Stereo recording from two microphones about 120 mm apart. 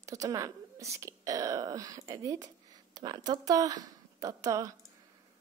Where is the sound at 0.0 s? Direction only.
30° right (ahead or behind).